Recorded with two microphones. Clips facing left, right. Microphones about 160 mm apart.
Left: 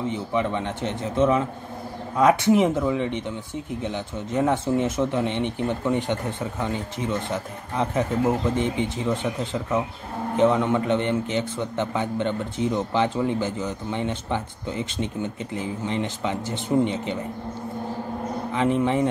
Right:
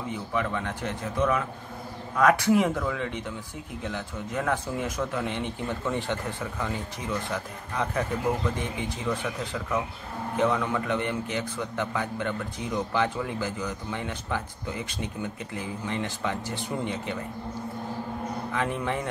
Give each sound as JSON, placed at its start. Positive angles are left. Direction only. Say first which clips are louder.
{"t": 0.1, "sound": "a man's voice", "louder": "left 4 dB", "side_deg": 20}
{"t": 18.5, "sound": "a man's voice", "louder": "left 8 dB", "side_deg": 20}